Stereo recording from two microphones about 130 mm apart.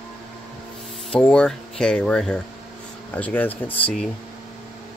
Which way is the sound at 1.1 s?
5° left (ahead or behind).